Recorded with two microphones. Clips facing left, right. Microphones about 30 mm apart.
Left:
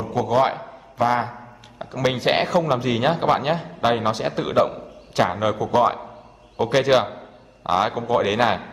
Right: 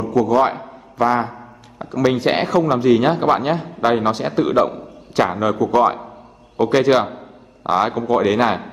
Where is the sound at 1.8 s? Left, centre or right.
Centre.